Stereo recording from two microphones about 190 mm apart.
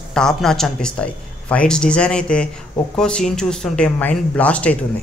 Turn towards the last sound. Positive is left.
turn(degrees=5)  # may be behind; listen again after turning